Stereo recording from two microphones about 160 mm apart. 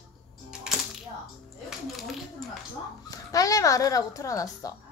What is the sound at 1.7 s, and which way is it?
Music, centre (ahead or behind).